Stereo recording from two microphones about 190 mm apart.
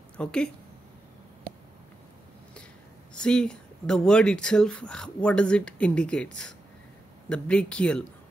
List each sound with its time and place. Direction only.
0.2 s speech: 5° left (ahead or behind)
3.2 s speech: 5° left (ahead or behind)